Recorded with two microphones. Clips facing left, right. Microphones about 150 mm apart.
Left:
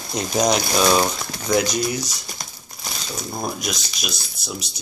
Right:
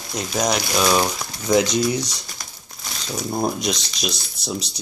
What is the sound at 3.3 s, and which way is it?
Speech, 25° right (ahead or behind).